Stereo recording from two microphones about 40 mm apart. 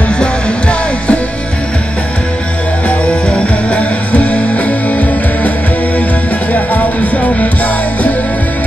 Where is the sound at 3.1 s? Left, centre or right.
Left.